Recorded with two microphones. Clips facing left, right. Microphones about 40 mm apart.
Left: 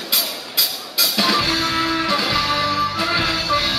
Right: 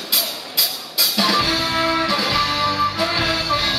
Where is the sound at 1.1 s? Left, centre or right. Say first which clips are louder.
Even; centre.